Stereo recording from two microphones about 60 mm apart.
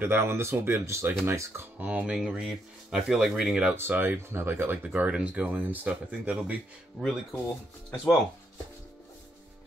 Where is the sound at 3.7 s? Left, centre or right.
Right.